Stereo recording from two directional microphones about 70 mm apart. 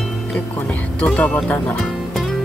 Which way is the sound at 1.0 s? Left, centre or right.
Left.